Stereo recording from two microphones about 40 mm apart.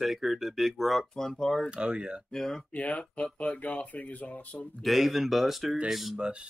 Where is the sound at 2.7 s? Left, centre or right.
Left.